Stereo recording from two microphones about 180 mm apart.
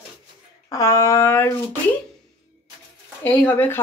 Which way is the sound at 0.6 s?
20° left (ahead or behind).